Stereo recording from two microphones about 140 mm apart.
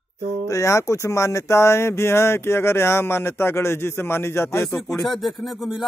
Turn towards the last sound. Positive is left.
turn(degrees=0)  # may be behind; listen again after turning